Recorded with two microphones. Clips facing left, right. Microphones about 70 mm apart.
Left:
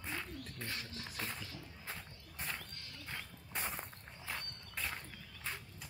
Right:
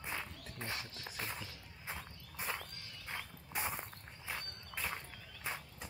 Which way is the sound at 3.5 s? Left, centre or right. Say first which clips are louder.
Right 2 dB; centre.